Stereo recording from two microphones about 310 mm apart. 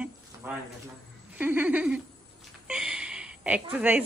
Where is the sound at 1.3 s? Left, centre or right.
Centre.